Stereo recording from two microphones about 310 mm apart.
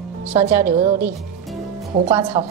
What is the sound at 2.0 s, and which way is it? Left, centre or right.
Speech, centre.